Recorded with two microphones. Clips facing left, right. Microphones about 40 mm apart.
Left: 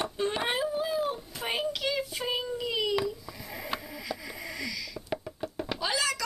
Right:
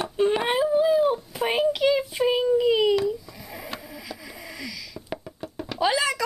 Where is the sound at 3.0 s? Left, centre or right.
Centre.